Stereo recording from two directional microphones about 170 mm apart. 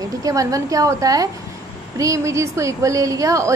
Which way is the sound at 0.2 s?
20° right (ahead or behind).